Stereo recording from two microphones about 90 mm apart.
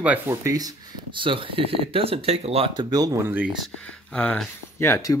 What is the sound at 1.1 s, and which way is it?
Speech, 70° right (ahead or behind).